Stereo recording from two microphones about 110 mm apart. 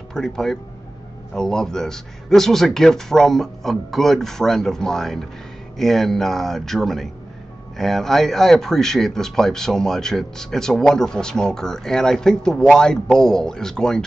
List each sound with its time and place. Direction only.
0.1 s a man's voice: 5° left (ahead or behind)